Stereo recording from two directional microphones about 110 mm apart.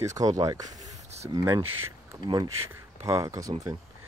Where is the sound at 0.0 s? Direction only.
30° right (ahead or behind).